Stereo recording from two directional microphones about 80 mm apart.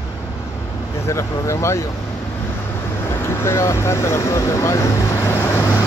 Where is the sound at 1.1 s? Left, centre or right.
Left.